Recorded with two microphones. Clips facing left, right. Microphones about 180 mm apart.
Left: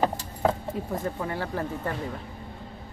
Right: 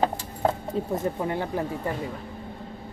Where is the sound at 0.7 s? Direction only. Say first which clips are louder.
Right 3 dB; 30° right (ahead or behind).